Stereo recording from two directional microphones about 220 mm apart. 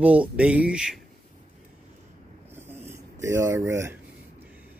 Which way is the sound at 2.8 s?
10° right (ahead or behind).